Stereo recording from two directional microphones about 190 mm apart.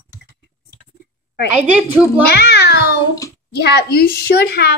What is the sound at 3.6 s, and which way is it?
A child's voice, 55° left (ahead or behind).